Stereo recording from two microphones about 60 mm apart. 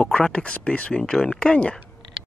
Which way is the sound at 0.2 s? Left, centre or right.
Centre.